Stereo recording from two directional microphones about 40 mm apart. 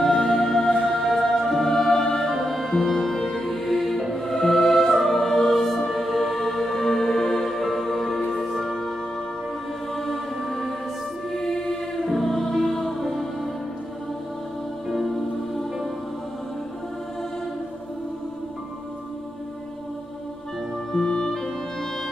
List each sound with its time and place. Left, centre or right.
0.0 s music: centre
9.9 s music: centre
11.3 s choir: centre
12.1 s music: centre
14.9 s music: centre
21.1 s music: centre